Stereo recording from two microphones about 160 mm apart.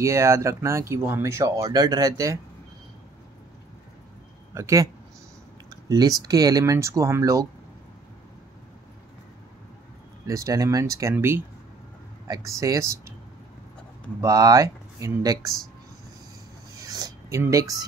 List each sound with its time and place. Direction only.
0.0 s speech: 20° right (ahead or behind)
4.6 s speech: 20° right (ahead or behind)
10.2 s speech: 20° right (ahead or behind)
14.2 s speech: 20° right (ahead or behind)
16.7 s a sound: 25° right (ahead or behind)